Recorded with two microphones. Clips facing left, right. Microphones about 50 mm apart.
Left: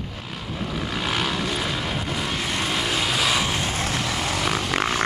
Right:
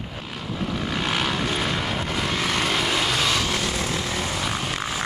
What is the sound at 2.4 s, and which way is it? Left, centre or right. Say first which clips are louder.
Vehicle: right 3 dB; right.